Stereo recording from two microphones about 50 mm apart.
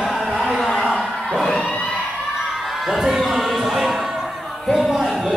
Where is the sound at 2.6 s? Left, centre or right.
Centre.